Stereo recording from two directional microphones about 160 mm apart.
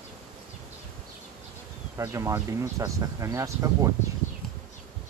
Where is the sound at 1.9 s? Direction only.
20° right (ahead or behind).